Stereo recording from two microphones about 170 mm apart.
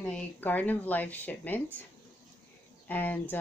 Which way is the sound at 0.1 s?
10° left (ahead or behind).